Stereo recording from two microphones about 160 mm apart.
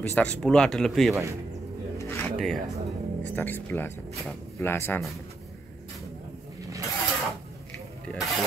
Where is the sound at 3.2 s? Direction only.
10° left (ahead or behind).